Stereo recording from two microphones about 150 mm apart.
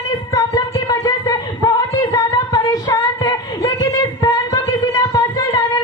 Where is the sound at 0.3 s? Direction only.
25° left (ahead or behind).